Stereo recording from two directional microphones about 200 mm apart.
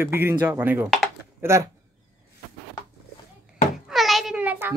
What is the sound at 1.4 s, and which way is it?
Speech, 15° right (ahead or behind).